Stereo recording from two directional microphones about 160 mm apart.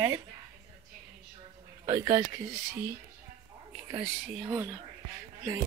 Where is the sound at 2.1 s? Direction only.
25° right (ahead or behind).